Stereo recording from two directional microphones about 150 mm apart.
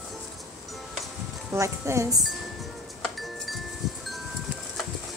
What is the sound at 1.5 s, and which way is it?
Speech, 20° right (ahead or behind).